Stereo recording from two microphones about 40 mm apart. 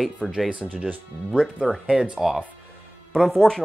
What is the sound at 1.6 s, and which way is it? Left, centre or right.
Speech, centre.